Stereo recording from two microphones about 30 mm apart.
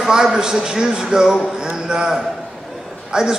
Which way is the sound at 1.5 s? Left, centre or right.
Right.